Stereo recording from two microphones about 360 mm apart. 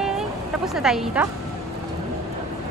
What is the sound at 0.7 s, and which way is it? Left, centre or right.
Speech, centre.